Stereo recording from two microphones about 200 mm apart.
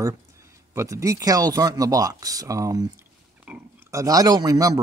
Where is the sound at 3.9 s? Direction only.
15° right (ahead or behind).